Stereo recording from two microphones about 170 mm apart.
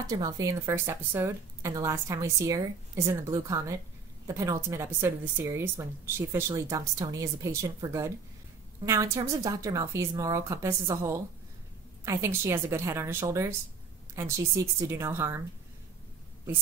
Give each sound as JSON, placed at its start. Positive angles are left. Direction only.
{"t": 0.0, "sound": "a woman's voice", "side_deg": -20}